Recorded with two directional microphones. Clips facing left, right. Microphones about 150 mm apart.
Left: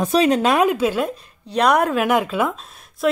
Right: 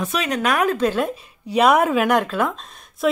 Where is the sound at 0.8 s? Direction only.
5° left (ahead or behind).